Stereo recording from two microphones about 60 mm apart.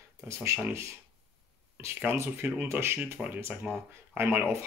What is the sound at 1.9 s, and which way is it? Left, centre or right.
Speech, right.